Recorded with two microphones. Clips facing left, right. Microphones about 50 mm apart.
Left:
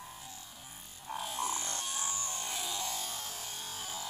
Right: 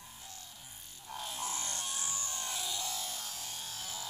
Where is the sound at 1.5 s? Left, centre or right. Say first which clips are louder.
Left 2 dB; left.